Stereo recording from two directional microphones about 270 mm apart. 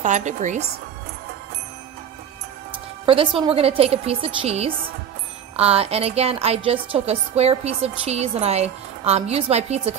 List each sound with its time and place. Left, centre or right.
0.0 s speech: right
3.1 s speech: centre